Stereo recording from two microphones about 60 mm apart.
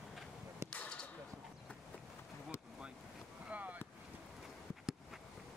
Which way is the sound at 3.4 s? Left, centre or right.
Right.